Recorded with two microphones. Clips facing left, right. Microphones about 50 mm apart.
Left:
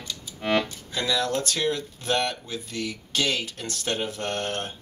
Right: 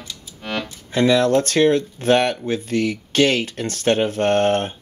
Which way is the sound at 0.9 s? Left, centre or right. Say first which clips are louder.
Right 11 dB; right.